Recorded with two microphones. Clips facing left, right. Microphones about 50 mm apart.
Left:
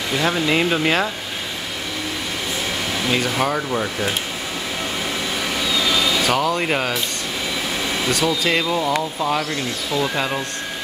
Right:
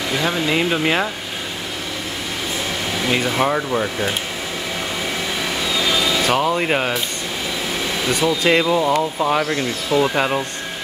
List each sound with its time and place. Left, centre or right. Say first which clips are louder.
0.2 s speech: left 1 dB; centre
3.3 s speech: right 2 dB; centre
5.8 s vehicle: right 1 dB; centre
6.2 s speech: right 1 dB; right
6.6 s speech: right 2 dB; centre
8.1 s speech: right 4 dB; centre